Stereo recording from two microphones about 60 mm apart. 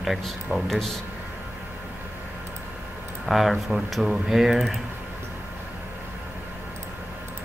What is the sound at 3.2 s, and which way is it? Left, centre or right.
Speech, centre.